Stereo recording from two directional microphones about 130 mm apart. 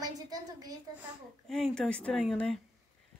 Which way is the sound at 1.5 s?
5° left (ahead or behind).